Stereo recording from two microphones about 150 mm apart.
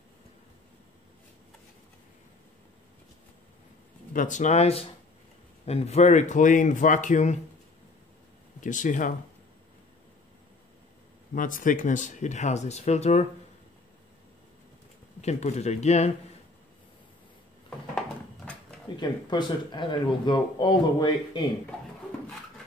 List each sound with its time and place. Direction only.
4.1 s speech: 60° left (ahead or behind)
8.5 s speech: 60° left (ahead or behind)
11.3 s speech: 60° left (ahead or behind); by 13.3 s 45° left (ahead or behind)
15.2 s speech: 45° left (ahead or behind)
17.6 s a sound: 5° left (ahead or behind)
18.9 s speech: 30° left (ahead or behind)